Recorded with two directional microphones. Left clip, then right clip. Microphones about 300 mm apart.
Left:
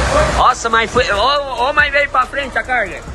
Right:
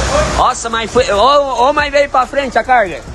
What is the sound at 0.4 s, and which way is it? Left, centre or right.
A man's voice, centre.